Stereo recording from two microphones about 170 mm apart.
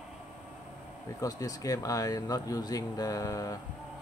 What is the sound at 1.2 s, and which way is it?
Speech, 20° left (ahead or behind).